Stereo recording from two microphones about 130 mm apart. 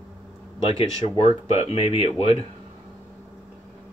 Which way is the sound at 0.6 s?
50° left (ahead or behind).